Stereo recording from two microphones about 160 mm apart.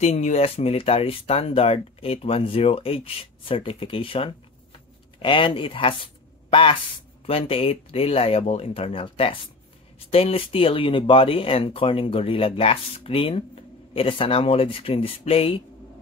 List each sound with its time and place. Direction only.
0.0 s speech: 45° left (ahead or behind)